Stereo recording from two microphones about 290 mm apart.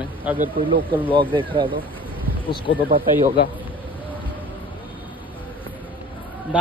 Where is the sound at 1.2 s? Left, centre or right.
Centre.